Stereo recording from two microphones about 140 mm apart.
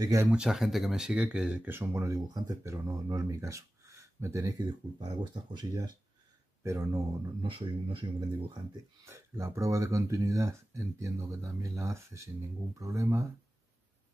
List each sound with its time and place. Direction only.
0.0 s speech: 25° right (ahead or behind)
0.3 s speech: 5° right (ahead or behind); by 4.6 s 20° right (ahead or behind)
4.9 s speech: 40° right (ahead or behind)
6.6 s speech: 20° right (ahead or behind)
7.4 s speech: 40° right (ahead or behind)
9.0 s speech: 20° right (ahead or behind)